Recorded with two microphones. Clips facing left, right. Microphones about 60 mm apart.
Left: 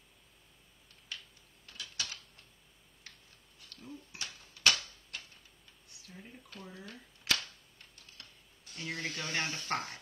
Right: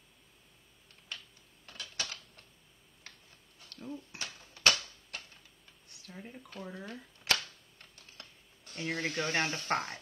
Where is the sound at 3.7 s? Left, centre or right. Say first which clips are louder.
Right 5 dB; right.